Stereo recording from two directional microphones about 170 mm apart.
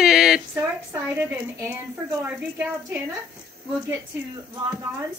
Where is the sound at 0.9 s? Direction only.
15° right (ahead or behind).